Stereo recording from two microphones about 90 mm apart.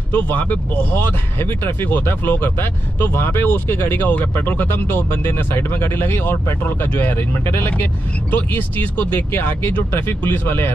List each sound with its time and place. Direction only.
0.1 s speech: 20° left (ahead or behind)